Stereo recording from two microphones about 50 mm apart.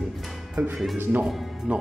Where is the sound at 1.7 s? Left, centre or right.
Right.